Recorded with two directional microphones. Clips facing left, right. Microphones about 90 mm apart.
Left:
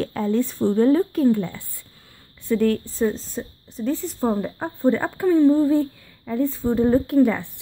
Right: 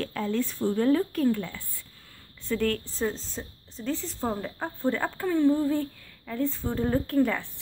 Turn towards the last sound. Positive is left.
turn(degrees=15)  # may be behind; listen again after turning